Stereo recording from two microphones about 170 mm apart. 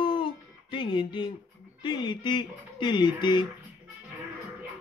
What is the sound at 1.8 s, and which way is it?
Speech, 25° left (ahead or behind).